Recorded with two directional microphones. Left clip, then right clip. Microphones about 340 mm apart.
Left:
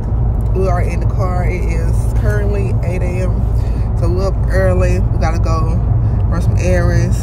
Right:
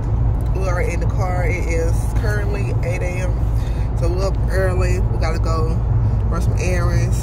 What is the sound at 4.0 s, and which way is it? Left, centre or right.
Speech, centre.